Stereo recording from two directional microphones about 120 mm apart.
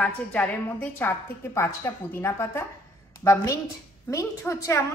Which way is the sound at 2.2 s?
20° left (ahead or behind).